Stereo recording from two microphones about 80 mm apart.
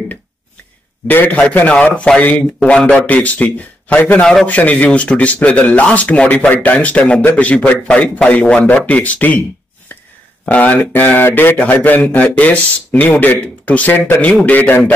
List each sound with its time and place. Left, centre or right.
1.0 s a man's voice: left
4.2 s speech: centre
4.5 s speech: centre
10.4 s a man's voice: centre